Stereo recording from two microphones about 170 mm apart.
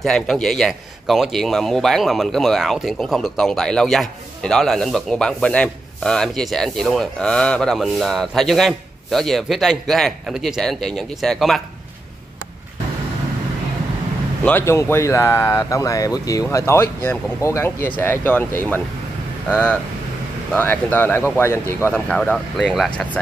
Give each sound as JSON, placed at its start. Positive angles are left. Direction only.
{"t": 0.0, "sound": "a man's voice", "side_deg": 0}
{"t": 14.4, "sound": "speech", "side_deg": 15}
{"t": 20.5, "sound": "speech", "side_deg": 10}